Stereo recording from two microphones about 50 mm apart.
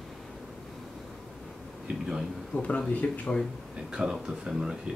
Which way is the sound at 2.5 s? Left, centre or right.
Left.